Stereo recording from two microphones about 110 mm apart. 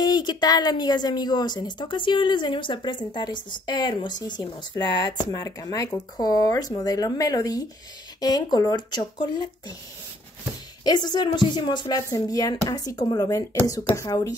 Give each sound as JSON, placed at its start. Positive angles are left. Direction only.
{"t": 0.0, "sound": "a woman's voice", "side_deg": 40}
{"t": 10.8, "sound": "a woman's voice", "side_deg": 40}